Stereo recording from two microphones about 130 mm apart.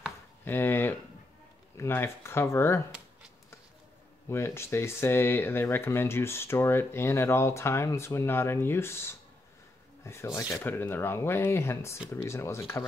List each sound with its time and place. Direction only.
0.5 s speech: 15° left (ahead or behind)
4.3 s speech: 20° left (ahead or behind)